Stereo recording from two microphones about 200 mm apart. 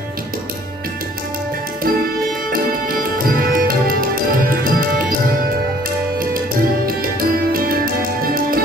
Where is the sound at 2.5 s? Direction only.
45° right (ahead or behind).